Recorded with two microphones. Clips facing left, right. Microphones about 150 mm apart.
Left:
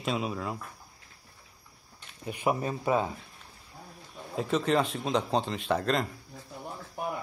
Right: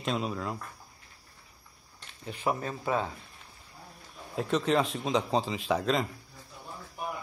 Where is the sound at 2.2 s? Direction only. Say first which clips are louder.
Left 2 dB; 15° left (ahead or behind).